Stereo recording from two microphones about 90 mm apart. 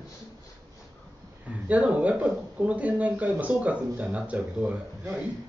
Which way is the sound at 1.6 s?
15° right (ahead or behind).